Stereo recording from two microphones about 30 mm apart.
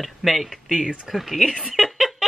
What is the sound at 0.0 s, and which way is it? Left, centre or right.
Speech, centre.